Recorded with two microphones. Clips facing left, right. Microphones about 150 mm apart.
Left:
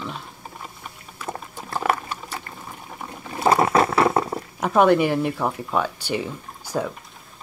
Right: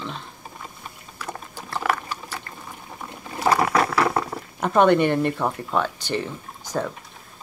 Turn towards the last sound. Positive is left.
turn(degrees=10)  # may be behind; listen again after turning